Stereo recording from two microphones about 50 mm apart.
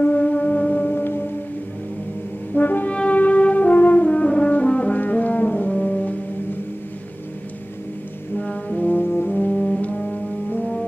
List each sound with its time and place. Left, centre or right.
0.0 s music: left
2.5 s french horn: left
2.9 s brass instrument: left
5.0 s music: left
5.7 s music: centre
8.4 s brass instrument: left
8.8 s brass instrument: left
9.8 s music: left